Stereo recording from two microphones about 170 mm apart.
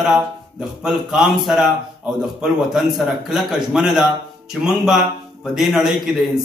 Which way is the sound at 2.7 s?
Centre (ahead or behind).